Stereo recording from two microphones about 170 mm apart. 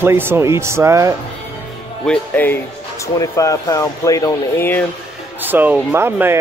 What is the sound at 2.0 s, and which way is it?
Speech, 10° left (ahead or behind).